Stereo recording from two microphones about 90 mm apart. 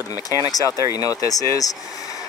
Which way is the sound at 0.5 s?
45° left (ahead or behind).